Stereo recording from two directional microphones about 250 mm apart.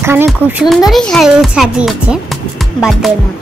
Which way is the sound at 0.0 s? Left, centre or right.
Centre.